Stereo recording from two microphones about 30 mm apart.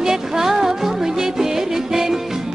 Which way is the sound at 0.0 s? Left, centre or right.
Centre.